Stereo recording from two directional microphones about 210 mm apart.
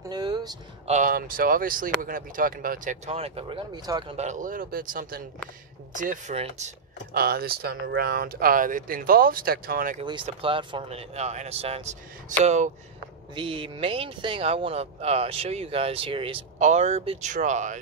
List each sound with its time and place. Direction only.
0.1 s a sound: 20° right (ahead or behind)
0.8 s speech: 35° right (ahead or behind)
4.2 s speech: 35° right (ahead or behind)
7.2 s speech: 45° right (ahead or behind)
10.0 s speech: 25° right (ahead or behind)
13.3 s speech: 25° right (ahead or behind)